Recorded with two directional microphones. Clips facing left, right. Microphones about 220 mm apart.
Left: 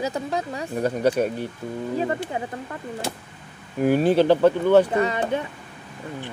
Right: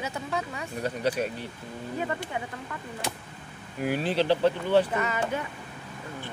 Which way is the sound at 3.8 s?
50° left (ahead or behind).